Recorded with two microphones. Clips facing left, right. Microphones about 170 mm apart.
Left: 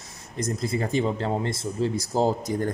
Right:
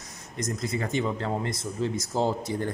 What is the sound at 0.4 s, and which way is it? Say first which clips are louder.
Speech: left 3 dB; 30° left (ahead or behind).